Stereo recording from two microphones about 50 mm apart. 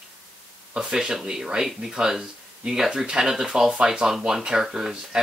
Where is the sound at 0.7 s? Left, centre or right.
Centre.